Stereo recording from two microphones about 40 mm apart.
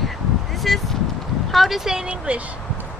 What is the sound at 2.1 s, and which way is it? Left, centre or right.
Speech, right.